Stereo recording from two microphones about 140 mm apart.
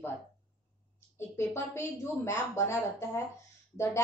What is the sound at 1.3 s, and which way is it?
A woman's voice, 20° left (ahead or behind).